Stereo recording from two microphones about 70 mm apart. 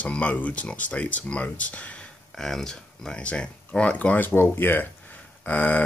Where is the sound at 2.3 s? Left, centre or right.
Centre; by 5.8 s left.